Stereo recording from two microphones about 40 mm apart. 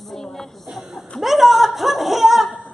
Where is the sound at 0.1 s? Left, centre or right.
Centre.